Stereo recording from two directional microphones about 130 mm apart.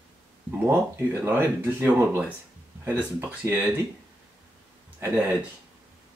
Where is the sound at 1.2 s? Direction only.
15° right (ahead or behind).